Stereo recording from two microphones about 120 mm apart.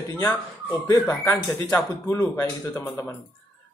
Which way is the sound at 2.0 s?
25° left (ahead or behind).